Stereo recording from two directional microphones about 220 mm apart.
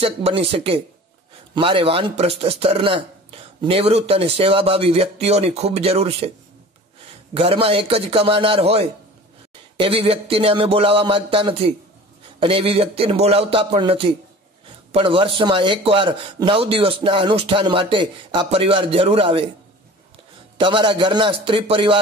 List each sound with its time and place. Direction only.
0.0 s a man's voice: 25° right (ahead or behind)
7.3 s a man's voice: 25° right (ahead or behind)
20.5 s a man's voice: 20° right (ahead or behind)